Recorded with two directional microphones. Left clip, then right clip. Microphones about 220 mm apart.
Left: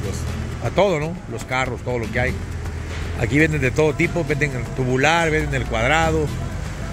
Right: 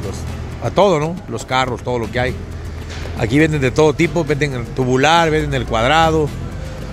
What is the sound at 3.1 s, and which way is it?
Speech, 15° right (ahead or behind).